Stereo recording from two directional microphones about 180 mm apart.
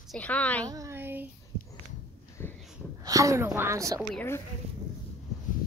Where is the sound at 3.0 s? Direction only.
20° right (ahead or behind).